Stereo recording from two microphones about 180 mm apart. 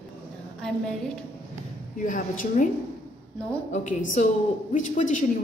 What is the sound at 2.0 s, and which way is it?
Speech, 50° left (ahead or behind).